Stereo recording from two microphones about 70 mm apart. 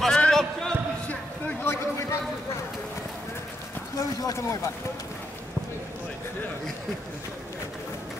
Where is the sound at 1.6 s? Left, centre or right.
Left.